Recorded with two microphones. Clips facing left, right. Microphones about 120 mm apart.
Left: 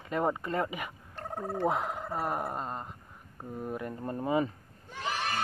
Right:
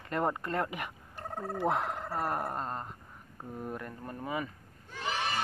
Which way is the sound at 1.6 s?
Centre (ahead or behind).